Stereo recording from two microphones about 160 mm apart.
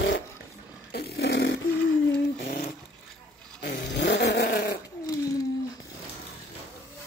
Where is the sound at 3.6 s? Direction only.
90° left.